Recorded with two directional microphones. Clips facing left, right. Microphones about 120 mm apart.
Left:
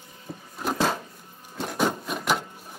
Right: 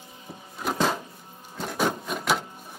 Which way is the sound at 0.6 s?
Centre (ahead or behind).